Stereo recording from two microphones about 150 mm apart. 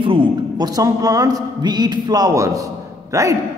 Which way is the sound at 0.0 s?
35° right (ahead or behind).